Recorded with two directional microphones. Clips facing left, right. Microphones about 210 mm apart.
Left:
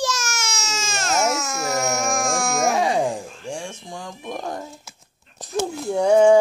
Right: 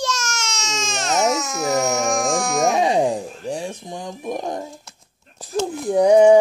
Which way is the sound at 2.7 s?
20° right (ahead or behind).